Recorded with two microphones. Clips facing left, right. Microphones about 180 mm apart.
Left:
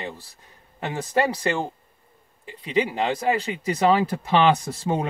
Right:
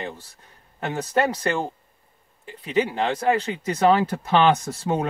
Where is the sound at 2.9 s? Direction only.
10° left (ahead or behind).